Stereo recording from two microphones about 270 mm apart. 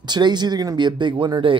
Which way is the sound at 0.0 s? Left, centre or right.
Centre.